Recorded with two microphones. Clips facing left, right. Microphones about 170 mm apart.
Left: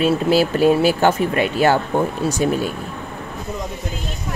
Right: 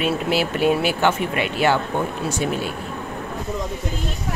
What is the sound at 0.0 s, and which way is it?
Speech, 40° left (ahead or behind).